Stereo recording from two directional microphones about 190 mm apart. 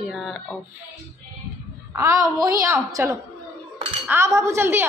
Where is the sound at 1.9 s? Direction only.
15° right (ahead or behind).